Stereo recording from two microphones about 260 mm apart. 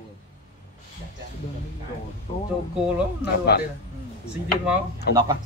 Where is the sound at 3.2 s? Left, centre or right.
Left.